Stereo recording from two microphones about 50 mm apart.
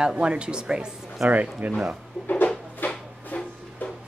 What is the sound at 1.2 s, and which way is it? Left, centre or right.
Speech, right.